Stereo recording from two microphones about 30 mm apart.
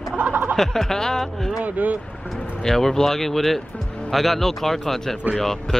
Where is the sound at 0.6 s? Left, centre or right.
Centre.